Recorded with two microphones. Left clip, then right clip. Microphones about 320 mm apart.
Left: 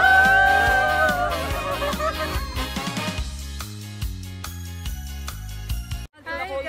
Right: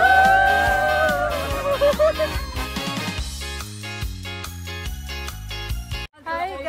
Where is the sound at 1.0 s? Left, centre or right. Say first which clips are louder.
Right 1 dB; centre.